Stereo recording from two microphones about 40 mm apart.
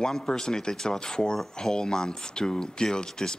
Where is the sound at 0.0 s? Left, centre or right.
Centre.